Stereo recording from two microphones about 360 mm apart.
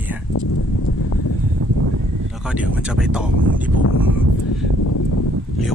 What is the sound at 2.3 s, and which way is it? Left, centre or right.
Speech, centre.